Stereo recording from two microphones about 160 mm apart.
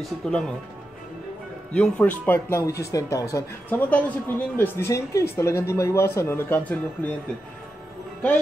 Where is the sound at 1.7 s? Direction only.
10° left (ahead or behind).